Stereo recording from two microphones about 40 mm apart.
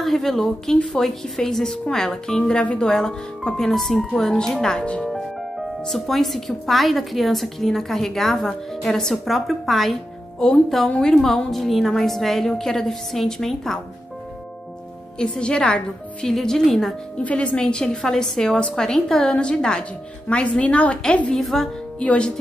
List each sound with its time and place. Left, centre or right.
0.0 s a woman's voice: centre; by 2.8 s left
2.8 s a woman's voice: centre
4.7 s a woman's voice: left
5.1 s speech: centre
10.4 s a woman's voice: centre
11.5 s a woman's voice: centre
15.1 s a woman's voice: left
16.4 s a woman's voice: centre
17.2 s speech: left
17.6 s a woman's voice: left
19.3 s a woman's voice: left
21.4 s speech: centre
22.0 s speech: left